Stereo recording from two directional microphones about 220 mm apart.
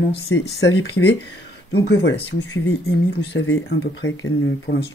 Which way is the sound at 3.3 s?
55° left (ahead or behind).